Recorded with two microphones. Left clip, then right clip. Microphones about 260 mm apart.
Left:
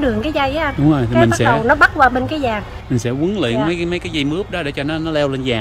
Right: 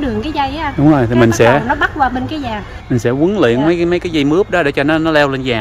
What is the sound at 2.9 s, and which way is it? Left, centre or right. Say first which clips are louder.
Speech: right 6 dB; centre.